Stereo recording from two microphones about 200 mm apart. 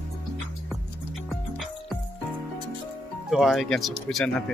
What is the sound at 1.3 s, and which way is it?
Music, centre (ahead or behind).